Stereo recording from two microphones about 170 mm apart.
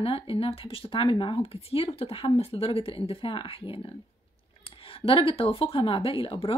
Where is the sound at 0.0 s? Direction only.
30° left (ahead or behind).